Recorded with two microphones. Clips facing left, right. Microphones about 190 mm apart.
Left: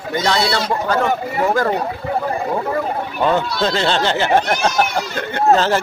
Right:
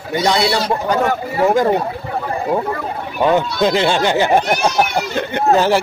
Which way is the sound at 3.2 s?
15° right (ahead or behind).